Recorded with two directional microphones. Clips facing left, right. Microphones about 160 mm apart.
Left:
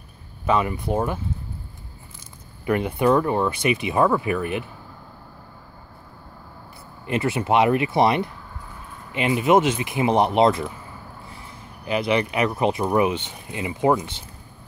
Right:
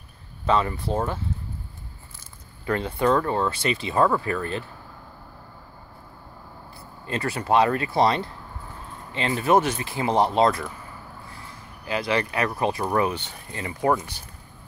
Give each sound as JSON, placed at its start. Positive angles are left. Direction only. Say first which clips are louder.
{"t": 0.5, "sound": "speech", "louder": "left 1 dB", "side_deg": 15}
{"t": 2.6, "sound": "speech", "louder": "left 3 dB", "side_deg": 15}
{"t": 7.1, "sound": "speech", "louder": "left 2 dB", "side_deg": 20}
{"t": 11.2, "sound": "a sound", "louder": "left 1 dB", "side_deg": 20}
{"t": 12.9, "sound": "speech", "louder": "left 3 dB", "side_deg": 20}